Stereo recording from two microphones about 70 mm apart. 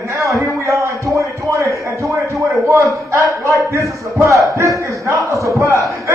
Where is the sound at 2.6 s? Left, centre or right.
Right.